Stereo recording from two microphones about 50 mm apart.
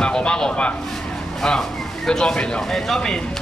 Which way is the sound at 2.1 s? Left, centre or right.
Centre.